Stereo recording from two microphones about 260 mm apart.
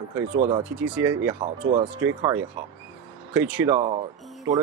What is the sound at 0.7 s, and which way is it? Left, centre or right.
Speech, centre.